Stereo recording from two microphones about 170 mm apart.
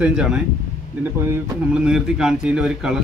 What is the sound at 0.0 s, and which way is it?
A man's voice, 5° right (ahead or behind).